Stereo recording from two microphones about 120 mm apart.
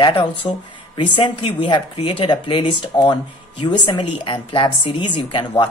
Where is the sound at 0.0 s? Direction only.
50° left (ahead or behind).